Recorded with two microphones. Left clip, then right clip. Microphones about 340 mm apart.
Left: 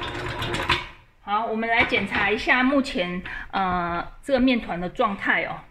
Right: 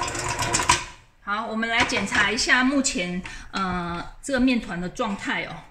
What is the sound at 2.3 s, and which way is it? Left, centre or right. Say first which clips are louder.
Speech: even; centre.